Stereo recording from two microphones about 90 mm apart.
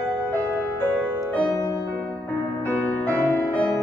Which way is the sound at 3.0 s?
15° left (ahead or behind).